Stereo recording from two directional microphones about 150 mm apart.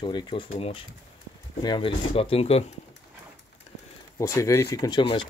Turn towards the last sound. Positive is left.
turn(degrees=35)  # may be behind; listen again after turning